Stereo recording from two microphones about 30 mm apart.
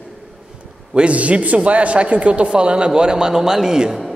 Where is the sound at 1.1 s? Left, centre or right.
Right; by 3.8 s centre.